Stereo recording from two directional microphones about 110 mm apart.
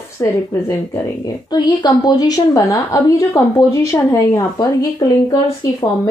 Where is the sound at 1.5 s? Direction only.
40° left (ahead or behind).